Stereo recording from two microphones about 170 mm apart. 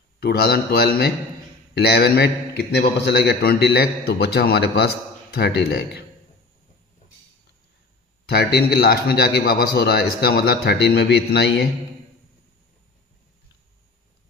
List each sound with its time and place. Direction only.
0.2 s a man's voice: 65° left (ahead or behind)
8.3 s a man's voice: 70° left (ahead or behind)